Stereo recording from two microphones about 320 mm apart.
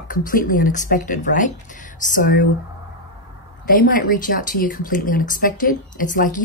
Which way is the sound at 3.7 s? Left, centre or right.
Left.